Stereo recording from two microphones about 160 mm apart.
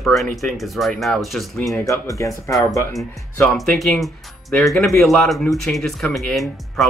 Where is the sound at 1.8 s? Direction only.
20° left (ahead or behind).